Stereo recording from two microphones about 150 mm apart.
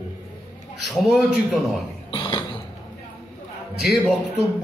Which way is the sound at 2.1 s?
30° left (ahead or behind).